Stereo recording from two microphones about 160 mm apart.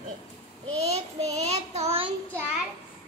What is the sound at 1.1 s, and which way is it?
Speech, 40° right (ahead or behind).